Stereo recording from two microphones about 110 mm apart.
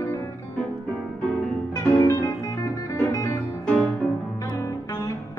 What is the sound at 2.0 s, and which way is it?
Music, 30° left (ahead or behind).